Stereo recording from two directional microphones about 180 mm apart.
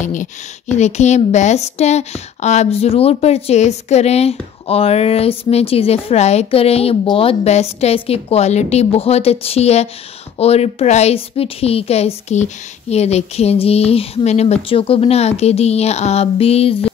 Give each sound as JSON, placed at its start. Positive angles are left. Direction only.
{"t": 0.0, "sound": "a woman's voice", "side_deg": 45}